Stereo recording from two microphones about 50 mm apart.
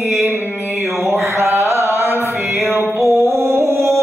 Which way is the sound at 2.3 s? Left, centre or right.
Right.